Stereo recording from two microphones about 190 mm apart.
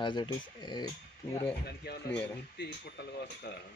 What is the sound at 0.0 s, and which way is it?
Speech, 25° left (ahead or behind).